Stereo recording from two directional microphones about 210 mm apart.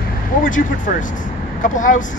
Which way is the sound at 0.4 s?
40° left (ahead or behind).